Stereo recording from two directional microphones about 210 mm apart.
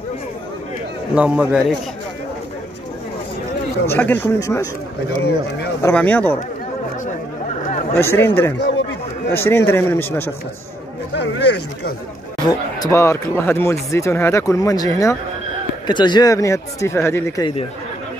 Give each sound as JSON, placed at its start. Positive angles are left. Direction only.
{"t": 1.1, "sound": "a man's voice", "side_deg": -5}
{"t": 3.8, "sound": "speech", "side_deg": 10}
{"t": 5.8, "sound": "speech", "side_deg": 10}
{"t": 7.4, "sound": "chatter", "side_deg": 35}
{"t": 7.9, "sound": "speech", "side_deg": 10}
{"t": 8.5, "sound": "chatter", "side_deg": 55}
{"t": 9.3, "sound": "speech", "side_deg": 10}
{"t": 11.1, "sound": "speech", "side_deg": 55}
{"t": 12.4, "sound": "speech", "side_deg": 15}